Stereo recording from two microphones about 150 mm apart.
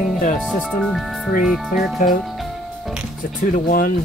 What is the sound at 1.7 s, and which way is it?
Speech, 65° left (ahead or behind).